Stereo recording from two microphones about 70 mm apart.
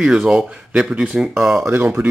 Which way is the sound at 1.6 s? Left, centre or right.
Right.